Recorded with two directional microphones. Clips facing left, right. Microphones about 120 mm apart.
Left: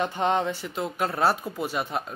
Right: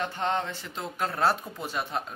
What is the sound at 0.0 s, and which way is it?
Speech, 15° left (ahead or behind).